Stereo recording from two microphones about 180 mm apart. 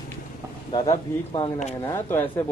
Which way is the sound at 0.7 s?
30° left (ahead or behind).